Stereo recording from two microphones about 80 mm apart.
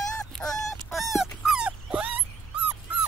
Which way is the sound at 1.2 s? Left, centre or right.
Centre.